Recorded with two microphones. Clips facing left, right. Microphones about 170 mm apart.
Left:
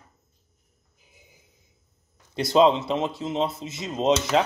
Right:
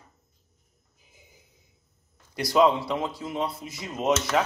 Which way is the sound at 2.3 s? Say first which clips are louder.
Left 2 dB; 25° left (ahead or behind).